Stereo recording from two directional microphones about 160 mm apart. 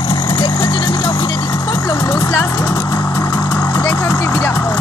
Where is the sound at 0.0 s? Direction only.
30° left (ahead or behind).